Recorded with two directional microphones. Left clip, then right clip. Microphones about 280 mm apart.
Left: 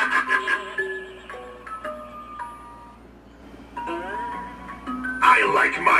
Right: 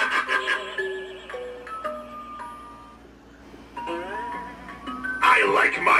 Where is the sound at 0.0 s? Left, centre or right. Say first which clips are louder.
Left 2 dB; centre.